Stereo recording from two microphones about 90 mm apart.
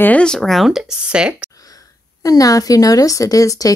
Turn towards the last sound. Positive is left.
turn(degrees=40)  # may be behind; listen again after turning